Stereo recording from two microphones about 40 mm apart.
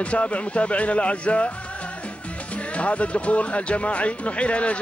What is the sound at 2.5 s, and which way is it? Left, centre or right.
Speech, left.